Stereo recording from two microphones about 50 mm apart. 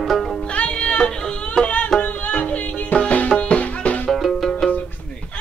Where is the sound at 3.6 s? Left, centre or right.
Left.